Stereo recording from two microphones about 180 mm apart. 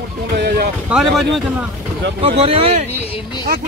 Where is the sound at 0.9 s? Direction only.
5° right (ahead or behind).